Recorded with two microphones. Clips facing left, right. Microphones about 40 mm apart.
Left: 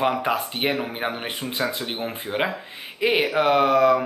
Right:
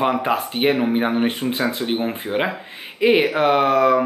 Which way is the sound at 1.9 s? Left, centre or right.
Centre.